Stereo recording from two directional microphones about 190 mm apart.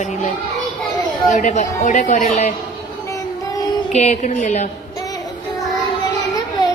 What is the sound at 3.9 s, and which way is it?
Speech, 40° left (ahead or behind).